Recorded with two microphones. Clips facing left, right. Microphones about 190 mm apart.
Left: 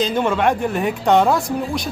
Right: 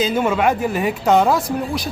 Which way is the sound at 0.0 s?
5° right (ahead or behind).